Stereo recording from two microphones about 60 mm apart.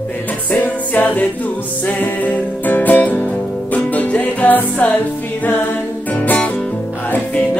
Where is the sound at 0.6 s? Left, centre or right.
Left.